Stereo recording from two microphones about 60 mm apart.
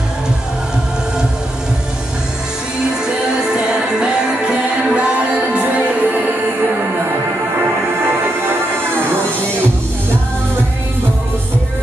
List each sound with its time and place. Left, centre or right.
3.3 s music: centre